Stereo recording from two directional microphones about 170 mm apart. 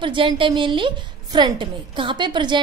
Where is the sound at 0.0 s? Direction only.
30° right (ahead or behind).